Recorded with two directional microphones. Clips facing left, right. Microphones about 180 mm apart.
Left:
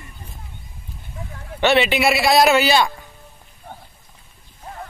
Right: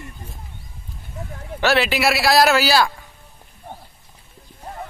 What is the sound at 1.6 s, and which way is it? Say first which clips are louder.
A man's voice: left 2 dB; centre (ahead or behind).